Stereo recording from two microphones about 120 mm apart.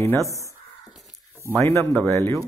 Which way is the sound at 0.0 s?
25° left (ahead or behind).